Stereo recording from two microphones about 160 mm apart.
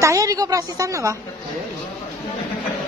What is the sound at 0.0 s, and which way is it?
A woman's voice, 20° right (ahead or behind).